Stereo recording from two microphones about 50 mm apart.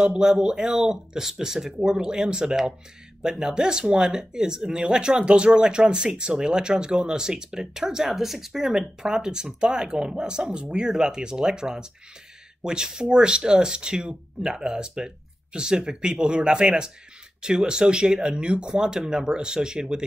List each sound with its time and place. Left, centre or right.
0.0 s speech: centre